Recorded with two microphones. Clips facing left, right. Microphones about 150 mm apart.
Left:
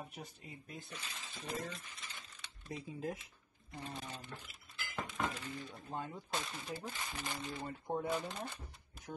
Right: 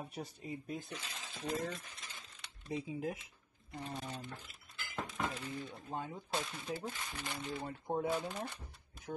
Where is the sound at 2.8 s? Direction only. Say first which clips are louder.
Even; 15° right (ahead or behind).